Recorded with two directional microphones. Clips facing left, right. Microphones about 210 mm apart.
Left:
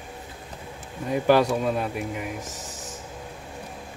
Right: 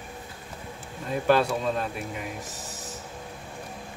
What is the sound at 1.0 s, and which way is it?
Speech, 15° left (ahead or behind).